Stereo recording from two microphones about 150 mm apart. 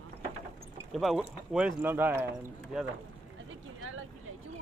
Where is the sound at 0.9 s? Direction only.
Centre (ahead or behind).